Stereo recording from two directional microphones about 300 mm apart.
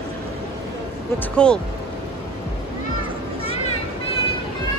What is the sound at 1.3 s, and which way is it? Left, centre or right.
Speech, centre.